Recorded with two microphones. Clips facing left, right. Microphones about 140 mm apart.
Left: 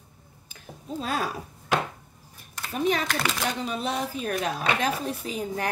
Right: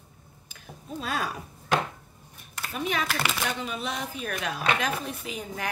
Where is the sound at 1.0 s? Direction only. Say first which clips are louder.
Left 2 dB; 35° left (ahead or behind).